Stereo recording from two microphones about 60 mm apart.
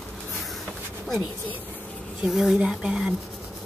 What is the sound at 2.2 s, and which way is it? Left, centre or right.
Speech, centre.